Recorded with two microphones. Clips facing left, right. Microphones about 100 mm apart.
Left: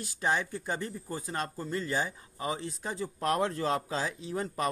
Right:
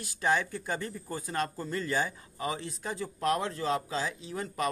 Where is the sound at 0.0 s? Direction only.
25° left (ahead or behind).